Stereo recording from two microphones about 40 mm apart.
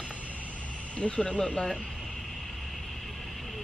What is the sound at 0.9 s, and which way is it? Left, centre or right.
Speech, left.